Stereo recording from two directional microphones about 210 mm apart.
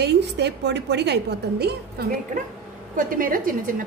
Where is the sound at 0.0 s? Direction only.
55° right (ahead or behind).